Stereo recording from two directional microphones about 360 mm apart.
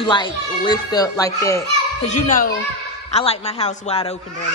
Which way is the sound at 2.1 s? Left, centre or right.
Centre.